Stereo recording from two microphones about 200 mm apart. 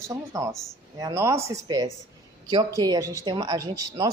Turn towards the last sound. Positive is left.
turn(degrees=-15)  # may be behind; listen again after turning